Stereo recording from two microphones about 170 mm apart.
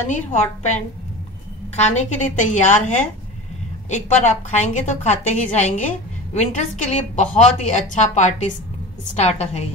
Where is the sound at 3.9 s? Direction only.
45° left (ahead or behind).